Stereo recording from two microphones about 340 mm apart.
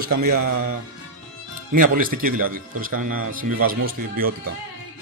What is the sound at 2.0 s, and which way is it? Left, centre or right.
Speech, right.